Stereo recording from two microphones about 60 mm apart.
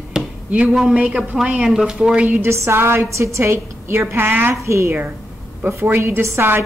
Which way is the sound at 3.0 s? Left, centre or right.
Right.